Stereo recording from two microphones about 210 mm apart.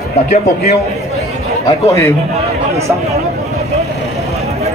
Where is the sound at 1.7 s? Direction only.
15° left (ahead or behind).